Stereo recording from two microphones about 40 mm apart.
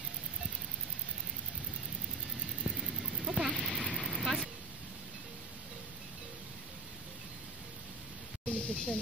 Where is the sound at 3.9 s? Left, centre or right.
Centre.